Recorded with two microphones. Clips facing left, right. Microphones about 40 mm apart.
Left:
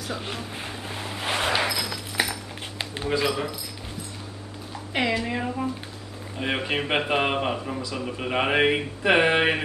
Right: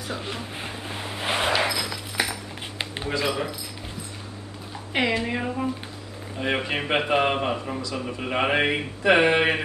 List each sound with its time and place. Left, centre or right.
0.4 s vehicle: centre
1.6 s a sound: centre
3.3 s speech: centre
4.9 s speech: centre
6.4 s speech: centre